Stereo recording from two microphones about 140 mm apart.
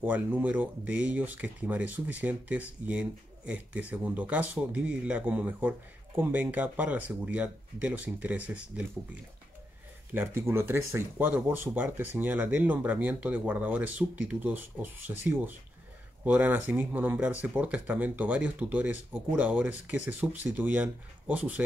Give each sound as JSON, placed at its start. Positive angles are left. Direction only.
{"t": 0.0, "sound": "speech", "side_deg": -10}